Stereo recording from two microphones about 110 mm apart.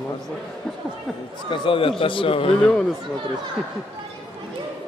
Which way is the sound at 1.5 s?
50° left (ahead or behind).